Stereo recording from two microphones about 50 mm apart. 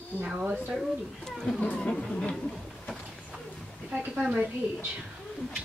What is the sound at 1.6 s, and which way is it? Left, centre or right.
Speech, left.